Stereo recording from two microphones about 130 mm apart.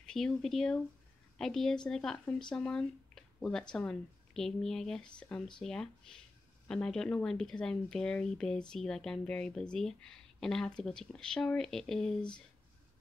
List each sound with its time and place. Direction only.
0.0 s speech: 5° left (ahead or behind)